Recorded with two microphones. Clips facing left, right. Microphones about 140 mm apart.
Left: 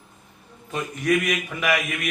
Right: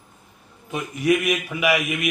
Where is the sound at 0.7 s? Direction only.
10° right (ahead or behind).